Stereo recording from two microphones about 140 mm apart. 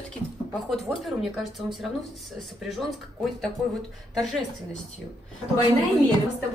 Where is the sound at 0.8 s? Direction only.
Centre (ahead or behind).